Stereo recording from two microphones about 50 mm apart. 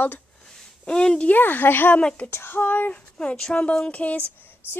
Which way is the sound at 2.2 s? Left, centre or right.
Left.